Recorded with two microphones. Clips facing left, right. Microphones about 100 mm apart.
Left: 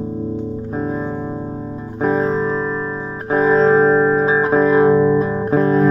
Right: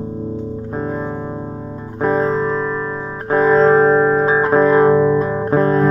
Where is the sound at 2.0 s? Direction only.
45° right (ahead or behind).